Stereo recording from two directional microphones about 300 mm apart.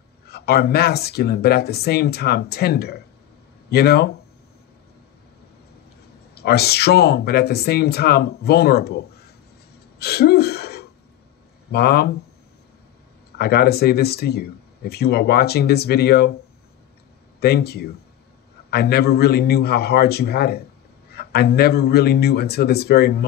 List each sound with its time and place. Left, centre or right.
0.3 s speech: left
6.3 s speech: left
9.9 s a sound: left
11.7 s speech: left
13.4 s speech: left
17.4 s speech: left